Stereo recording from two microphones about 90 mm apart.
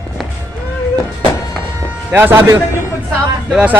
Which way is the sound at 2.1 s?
30° right (ahead or behind).